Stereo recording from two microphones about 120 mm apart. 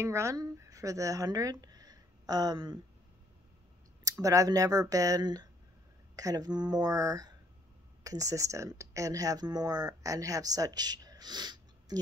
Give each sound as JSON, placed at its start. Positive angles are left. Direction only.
{"t": 0.0, "sound": "speech", "side_deg": -25}
{"t": 4.0, "sound": "speech", "side_deg": -30}